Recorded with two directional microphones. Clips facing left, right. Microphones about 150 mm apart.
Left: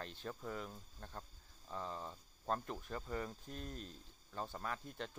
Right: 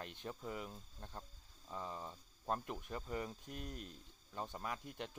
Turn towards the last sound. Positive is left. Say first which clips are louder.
# even
turn(degrees=-10)  # may be behind; listen again after turning